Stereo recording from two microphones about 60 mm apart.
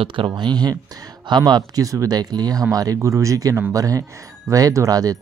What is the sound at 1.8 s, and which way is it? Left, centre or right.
Speech, right.